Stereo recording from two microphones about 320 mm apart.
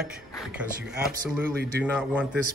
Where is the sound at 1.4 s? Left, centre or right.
Right.